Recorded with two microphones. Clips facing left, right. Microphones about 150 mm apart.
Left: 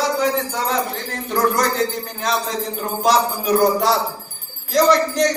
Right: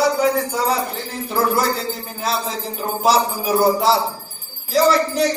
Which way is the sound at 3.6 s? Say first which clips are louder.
Right 3 dB; centre (ahead or behind).